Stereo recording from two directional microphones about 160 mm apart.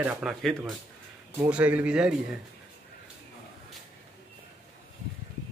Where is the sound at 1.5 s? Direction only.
10° right (ahead or behind).